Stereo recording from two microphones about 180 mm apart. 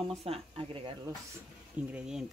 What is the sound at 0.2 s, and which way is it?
Speech, 30° right (ahead or behind).